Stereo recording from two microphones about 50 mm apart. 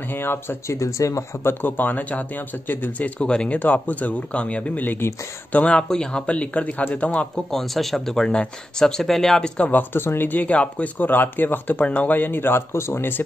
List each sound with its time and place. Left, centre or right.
0.1 s speech: left
0.7 s speech: left
3.3 s speech: centre
3.5 s speech: left
4.8 s speech: left
5.5 s speech: left
7.5 s speech: centre
9.7 s speech: left